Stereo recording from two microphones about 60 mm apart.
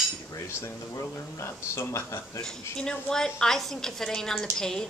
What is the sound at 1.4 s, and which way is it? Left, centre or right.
Speech, left.